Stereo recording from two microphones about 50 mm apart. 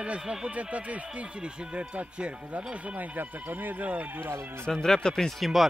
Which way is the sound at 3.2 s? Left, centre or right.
Right.